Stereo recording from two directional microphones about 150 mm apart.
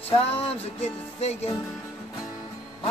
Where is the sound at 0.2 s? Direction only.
40° left (ahead or behind).